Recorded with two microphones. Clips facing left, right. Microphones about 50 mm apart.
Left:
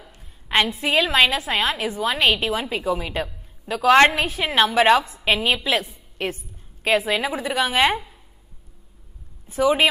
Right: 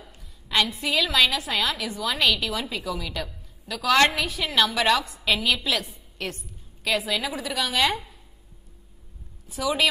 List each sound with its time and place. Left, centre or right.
0.1 s a woman's voice: left
9.5 s a woman's voice: left